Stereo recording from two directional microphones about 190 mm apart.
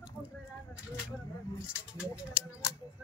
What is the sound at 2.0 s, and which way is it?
Speech, 5° right (ahead or behind).